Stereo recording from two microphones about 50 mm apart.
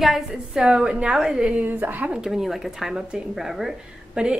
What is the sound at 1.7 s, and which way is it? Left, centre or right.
Speech, right.